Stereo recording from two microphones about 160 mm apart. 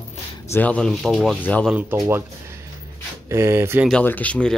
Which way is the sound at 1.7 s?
15° right (ahead or behind).